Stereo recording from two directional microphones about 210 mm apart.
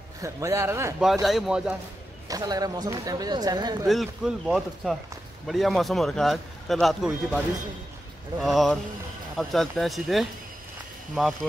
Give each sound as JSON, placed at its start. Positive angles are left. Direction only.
{"t": 0.2, "sound": "speech", "side_deg": -15}
{"t": 1.2, "sound": "a man's voice", "side_deg": 0}
{"t": 2.2, "sound": "speech", "side_deg": -20}
{"t": 3.8, "sound": "a man's voice", "side_deg": 0}